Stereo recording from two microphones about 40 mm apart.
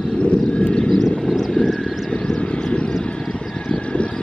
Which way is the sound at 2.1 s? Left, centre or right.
Left.